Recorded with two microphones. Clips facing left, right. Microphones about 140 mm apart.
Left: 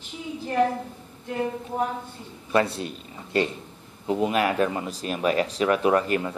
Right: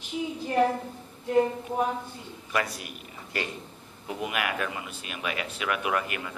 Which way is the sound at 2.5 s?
30° left (ahead or behind).